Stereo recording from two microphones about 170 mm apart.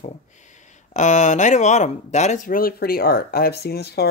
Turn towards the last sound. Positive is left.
turn(degrees=70)  # may be behind; listen again after turning